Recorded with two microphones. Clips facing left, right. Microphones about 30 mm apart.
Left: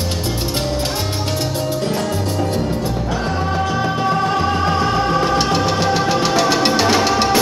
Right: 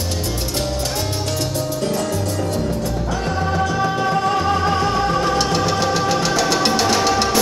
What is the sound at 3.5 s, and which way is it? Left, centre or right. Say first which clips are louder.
Music: right 1 dB; centre.